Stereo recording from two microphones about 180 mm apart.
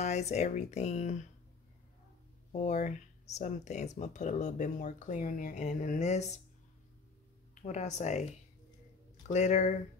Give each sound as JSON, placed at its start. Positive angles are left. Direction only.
{"t": 0.0, "sound": "speech", "side_deg": 40}
{"t": 2.5, "sound": "speech", "side_deg": 40}
{"t": 7.6, "sound": "speech", "side_deg": 40}
{"t": 9.3, "sound": "speech", "side_deg": 40}